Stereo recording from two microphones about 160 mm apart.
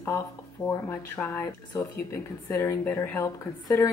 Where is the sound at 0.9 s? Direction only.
15° left (ahead or behind).